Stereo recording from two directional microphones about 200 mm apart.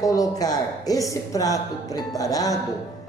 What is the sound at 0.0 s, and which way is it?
A woman's voice, 15° left (ahead or behind).